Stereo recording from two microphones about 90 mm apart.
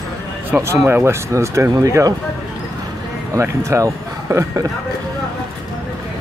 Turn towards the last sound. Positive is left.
turn(degrees=-35)  # may be behind; listen again after turning